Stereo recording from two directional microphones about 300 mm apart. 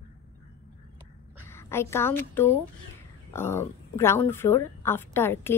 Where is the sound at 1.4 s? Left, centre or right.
Centre.